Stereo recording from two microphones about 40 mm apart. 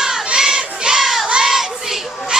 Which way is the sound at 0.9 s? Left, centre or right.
Centre.